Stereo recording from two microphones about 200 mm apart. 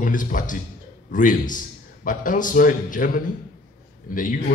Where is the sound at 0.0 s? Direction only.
40° left (ahead or behind).